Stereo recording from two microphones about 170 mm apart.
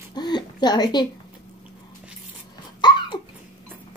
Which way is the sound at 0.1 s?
25° left (ahead or behind).